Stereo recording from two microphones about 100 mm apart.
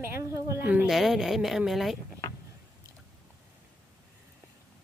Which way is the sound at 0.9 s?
5° right (ahead or behind).